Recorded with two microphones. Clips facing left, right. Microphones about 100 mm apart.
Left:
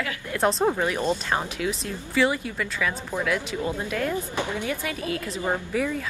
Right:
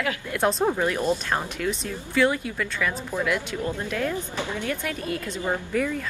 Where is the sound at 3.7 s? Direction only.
10° left (ahead or behind).